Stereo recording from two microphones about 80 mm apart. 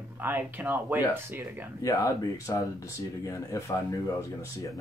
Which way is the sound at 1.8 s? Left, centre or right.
Left.